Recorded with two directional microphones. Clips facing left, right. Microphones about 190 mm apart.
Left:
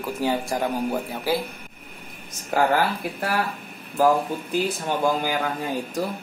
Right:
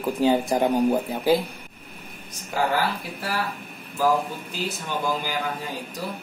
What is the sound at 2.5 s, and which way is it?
Speech, 50° left (ahead or behind).